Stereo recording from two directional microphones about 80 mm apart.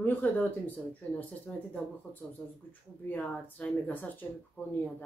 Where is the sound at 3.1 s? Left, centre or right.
Left.